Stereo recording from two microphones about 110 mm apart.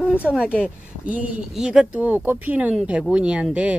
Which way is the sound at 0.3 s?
10° right (ahead or behind).